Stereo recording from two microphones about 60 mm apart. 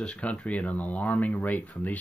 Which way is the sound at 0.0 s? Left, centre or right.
Left.